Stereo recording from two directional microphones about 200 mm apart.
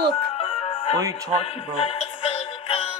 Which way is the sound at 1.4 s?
30° left (ahead or behind).